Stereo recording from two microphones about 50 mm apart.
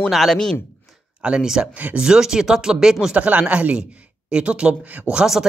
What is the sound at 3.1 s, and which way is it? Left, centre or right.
Speech, right.